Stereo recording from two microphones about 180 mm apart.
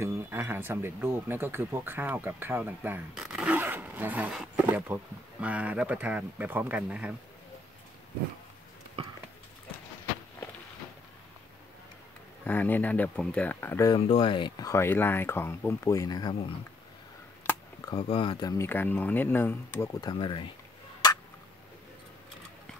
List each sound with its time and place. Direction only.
0.0 s speech: 15° right (ahead or behind)
9.0 s a sound: 30° right (ahead or behind)
12.4 s speech: 10° left (ahead or behind)
13.9 s speech: 30° left (ahead or behind)
18.0 s speech: 30° left (ahead or behind)